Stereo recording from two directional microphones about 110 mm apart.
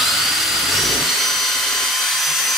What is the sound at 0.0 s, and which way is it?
Drill, centre (ahead or behind).